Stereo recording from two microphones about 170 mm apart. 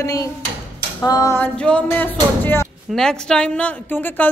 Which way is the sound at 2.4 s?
15° left (ahead or behind).